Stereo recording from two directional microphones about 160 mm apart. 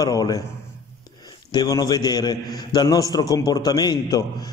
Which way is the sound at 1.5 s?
25° left (ahead or behind).